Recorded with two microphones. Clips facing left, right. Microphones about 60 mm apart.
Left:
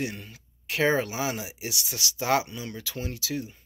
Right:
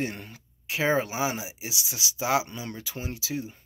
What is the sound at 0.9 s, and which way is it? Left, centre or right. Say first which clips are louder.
Speech: right 1 dB; centre.